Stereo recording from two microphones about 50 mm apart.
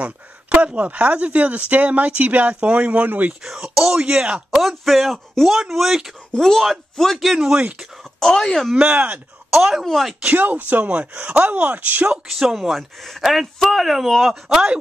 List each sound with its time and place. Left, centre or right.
0.0 s speech: right
3.1 s speech: right
3.4 s speech: centre
4.0 s speech: right
4.5 s speech: centre
6.3 s speech: centre
7.5 s speech: right
8.0 s speech: centre
8.8 s speech: right
9.5 s speech: centre
10.2 s speech: right
12.4 s speech: centre